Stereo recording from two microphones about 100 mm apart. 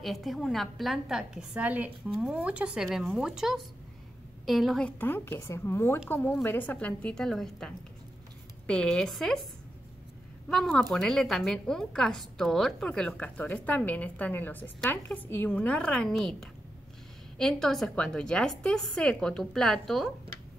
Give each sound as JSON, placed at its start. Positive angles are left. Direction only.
{"t": 0.0, "sound": "a woman's voice", "side_deg": 0}
{"t": 4.8, "sound": "a woman's voice", "side_deg": 20}
{"t": 10.5, "sound": "a woman's voice", "side_deg": 0}